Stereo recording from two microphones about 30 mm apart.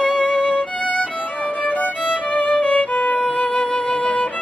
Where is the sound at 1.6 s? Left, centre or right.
Left.